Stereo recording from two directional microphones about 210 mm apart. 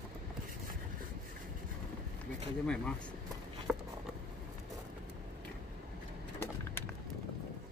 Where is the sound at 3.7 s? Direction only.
5° right (ahead or behind).